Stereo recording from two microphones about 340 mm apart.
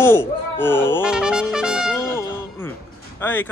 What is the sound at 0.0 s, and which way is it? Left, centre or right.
Music, centre.